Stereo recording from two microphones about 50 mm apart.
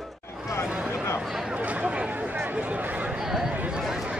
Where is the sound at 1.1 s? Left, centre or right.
Centre.